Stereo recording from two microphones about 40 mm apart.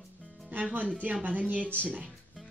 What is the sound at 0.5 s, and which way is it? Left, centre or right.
Speech, right.